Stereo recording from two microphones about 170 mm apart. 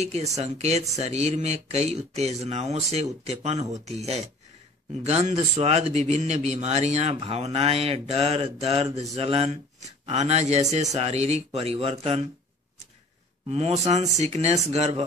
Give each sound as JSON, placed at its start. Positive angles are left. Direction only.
{"t": 0.0, "sound": "speech", "side_deg": -40}
{"t": 13.5, "sound": "speech", "side_deg": -40}